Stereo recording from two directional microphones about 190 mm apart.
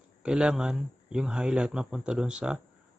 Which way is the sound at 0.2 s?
5° right (ahead or behind).